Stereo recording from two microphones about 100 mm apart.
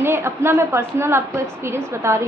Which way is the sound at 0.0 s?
25° right (ahead or behind).